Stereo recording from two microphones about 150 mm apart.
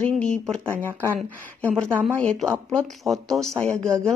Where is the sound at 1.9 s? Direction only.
15° right (ahead or behind).